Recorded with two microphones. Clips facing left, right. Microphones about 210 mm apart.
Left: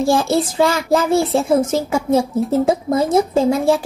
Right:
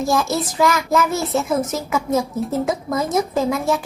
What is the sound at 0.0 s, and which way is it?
Speech, 30° left (ahead or behind).